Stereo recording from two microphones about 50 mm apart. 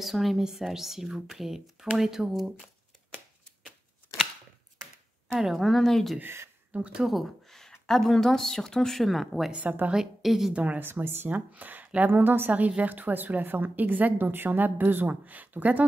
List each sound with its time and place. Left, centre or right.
0.0 s speech: centre
5.4 s speech: centre
6.7 s speech: right
7.0 s speech: centre
7.4 s a woman's voice: centre
9.5 s a woman's voice: right
9.9 s speech: centre
10.5 s a woman's voice: right
10.8 s speech: right
11.2 s a woman's voice: right
12.1 s a woman's voice: right